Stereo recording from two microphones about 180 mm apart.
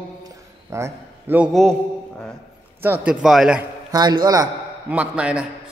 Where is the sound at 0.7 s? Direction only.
15° right (ahead or behind).